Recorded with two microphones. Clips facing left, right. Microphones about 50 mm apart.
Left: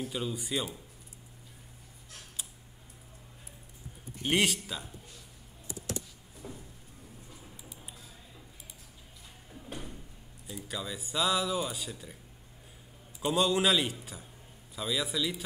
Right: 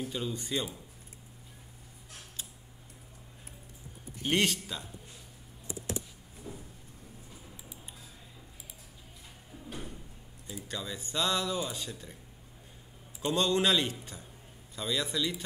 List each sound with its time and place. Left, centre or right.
0.1 s speech: centre
4.2 s speech: centre
5.7 s typing: right
6.4 s a sound: left
10.4 s speech: centre
13.2 s speech: centre